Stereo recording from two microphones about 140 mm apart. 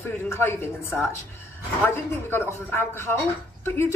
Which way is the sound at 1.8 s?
15° left (ahead or behind).